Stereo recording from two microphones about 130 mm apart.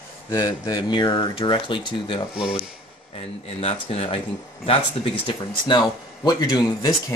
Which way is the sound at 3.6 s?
45° left (ahead or behind).